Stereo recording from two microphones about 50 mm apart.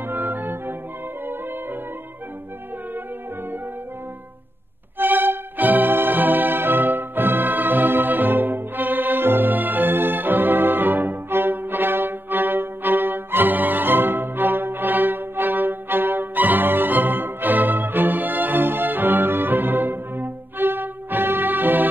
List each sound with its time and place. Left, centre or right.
0.0 s music: right
4.9 s music: right